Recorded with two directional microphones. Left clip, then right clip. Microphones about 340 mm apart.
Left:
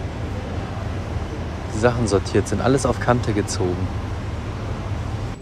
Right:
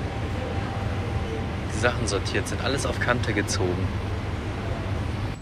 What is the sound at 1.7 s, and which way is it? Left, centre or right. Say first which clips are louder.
Speech: left 6 dB; centre.